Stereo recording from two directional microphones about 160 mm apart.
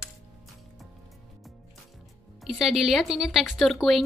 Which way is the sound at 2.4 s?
Centre (ahead or behind).